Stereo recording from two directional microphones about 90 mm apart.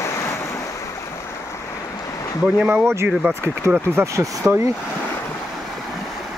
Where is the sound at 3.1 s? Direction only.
10° right (ahead or behind).